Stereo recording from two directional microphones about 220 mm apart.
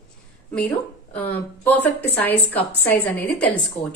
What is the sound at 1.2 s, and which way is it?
A woman's voice, 10° left (ahead or behind).